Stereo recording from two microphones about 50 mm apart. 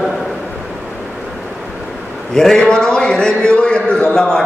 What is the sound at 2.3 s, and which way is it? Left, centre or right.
A man's voice, centre.